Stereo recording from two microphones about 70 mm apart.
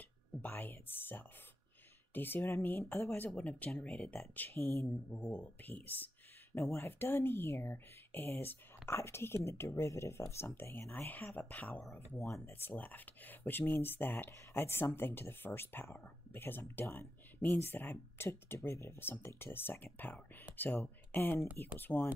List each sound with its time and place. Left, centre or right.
0.4 s speech: left
3.3 s speech: left
4.5 s speech: left
5.1 s speech: left
6.5 s speech: left
12.1 s speech: left